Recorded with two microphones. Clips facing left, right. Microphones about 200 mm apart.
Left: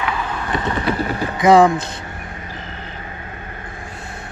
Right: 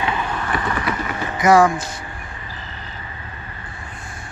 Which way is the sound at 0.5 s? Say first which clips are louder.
Left 5 dB; 25° left (ahead or behind).